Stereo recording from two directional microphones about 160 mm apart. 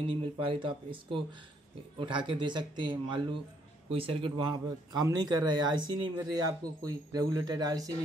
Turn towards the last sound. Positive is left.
turn(degrees=-25)  # may be behind; listen again after turning